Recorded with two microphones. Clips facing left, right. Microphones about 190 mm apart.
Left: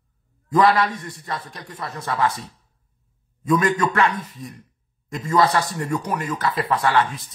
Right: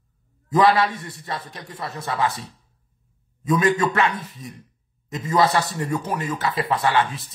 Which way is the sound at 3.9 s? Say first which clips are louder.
Left 1 dB; 25° right (ahead or behind).